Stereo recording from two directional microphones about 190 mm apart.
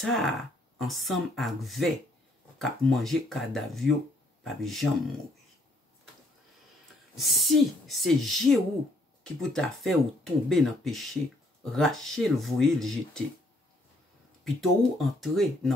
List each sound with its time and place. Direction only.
0.0 s speech: centre (ahead or behind)
7.2 s speech: centre (ahead or behind)
14.4 s speech: centre (ahead or behind)